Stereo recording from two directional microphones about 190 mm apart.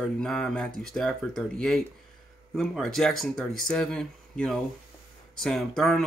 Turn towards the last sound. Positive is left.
turn(degrees=0)  # may be behind; listen again after turning